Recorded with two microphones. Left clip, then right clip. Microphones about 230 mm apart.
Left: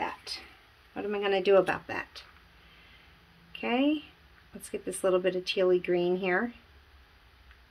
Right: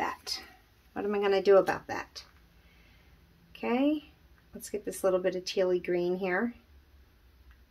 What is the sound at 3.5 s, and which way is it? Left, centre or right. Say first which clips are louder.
Speech: left 1 dB; centre.